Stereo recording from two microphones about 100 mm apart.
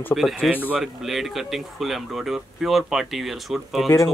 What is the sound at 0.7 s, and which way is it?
Speech, centre (ahead or behind).